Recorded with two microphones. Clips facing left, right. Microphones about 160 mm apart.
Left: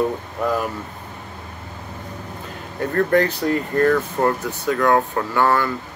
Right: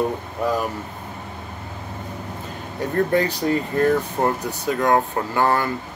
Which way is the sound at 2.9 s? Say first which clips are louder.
Left 2 dB; 15° right (ahead or behind).